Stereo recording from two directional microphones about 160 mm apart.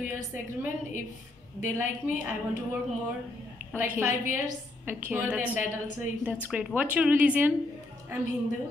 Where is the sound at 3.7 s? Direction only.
15° right (ahead or behind).